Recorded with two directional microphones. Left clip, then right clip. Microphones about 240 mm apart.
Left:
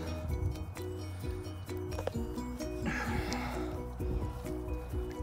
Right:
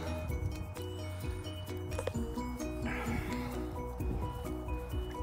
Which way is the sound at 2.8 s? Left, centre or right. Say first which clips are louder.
Left 4 dB; left.